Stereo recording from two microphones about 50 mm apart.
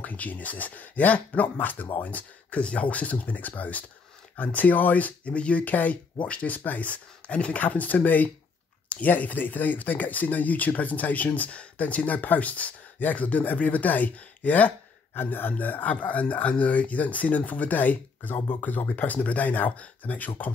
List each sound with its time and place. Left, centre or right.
0.0 s speech: left